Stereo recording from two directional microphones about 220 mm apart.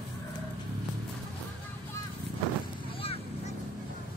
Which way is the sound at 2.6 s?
25° left (ahead or behind).